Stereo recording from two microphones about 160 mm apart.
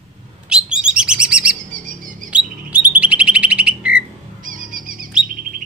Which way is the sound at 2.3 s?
10° right (ahead or behind).